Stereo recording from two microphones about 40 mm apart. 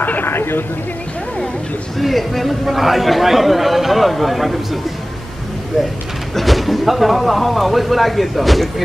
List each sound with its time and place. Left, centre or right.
0.0 s a sound: left
0.3 s speech: left
2.0 s speech: centre
6.3 s speech: centre